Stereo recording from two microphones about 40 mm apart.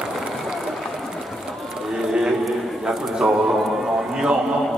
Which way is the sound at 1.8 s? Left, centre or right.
Centre.